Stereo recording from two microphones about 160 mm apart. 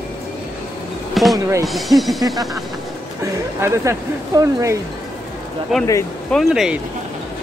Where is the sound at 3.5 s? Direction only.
20° right (ahead or behind).